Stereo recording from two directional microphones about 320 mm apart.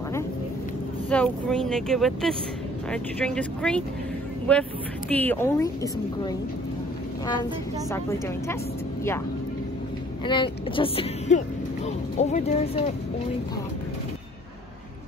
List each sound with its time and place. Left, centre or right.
1.1 s speech: centre
5.1 s a woman's voice: centre
7.9 s a woman's voice: centre
10.2 s speech: centre